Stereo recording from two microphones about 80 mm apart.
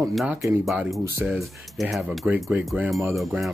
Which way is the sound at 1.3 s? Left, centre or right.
Centre.